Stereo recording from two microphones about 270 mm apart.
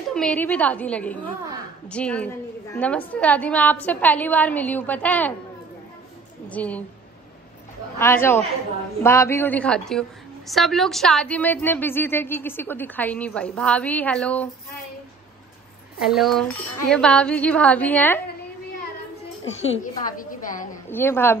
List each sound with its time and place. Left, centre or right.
0.1 s a woman's voice: centre
6.5 s a woman's voice: centre
8.0 s a man's voice: centre
16.0 s a woman's voice: centre
19.8 s a woman's voice: left
20.9 s a man's voice: centre